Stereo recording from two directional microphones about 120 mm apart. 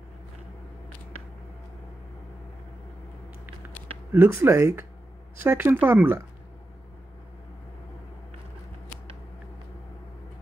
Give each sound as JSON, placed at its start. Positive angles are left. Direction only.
{"t": 4.1, "sound": "speech", "side_deg": -20}